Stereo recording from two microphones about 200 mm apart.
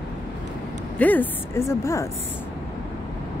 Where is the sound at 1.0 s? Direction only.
10° left (ahead or behind).